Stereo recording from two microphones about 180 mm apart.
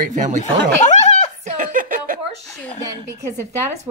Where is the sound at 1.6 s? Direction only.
50° right (ahead or behind).